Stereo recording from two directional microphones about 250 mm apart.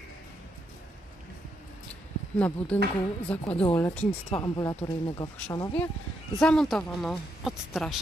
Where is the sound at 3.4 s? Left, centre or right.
Left.